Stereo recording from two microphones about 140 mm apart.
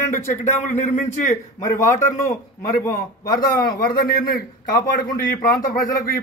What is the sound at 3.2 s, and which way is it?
A man's voice, 90° left.